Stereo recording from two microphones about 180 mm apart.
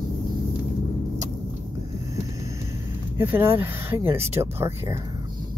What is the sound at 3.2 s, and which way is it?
Speech, 15° right (ahead or behind).